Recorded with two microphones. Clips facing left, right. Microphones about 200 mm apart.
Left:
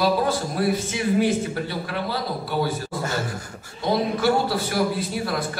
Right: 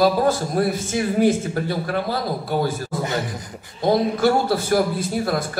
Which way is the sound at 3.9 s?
45° right (ahead or behind).